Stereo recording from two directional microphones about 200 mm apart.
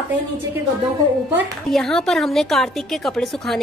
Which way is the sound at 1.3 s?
Centre (ahead or behind).